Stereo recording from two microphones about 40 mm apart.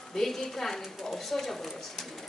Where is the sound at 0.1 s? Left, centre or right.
Centre.